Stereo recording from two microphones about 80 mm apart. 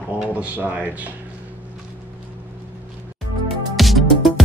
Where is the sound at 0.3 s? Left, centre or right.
Centre.